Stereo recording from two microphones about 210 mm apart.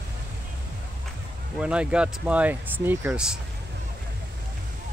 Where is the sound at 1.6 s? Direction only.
5° right (ahead or behind).